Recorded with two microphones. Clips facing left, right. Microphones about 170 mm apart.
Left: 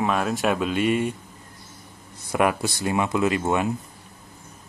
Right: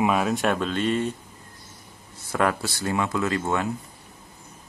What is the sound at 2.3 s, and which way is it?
Speech, 15° left (ahead or behind).